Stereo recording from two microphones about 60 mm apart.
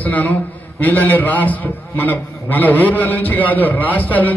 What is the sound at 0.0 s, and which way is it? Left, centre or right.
A man's voice, left.